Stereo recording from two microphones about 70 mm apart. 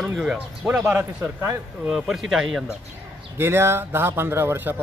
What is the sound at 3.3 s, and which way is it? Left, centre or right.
Speech, right.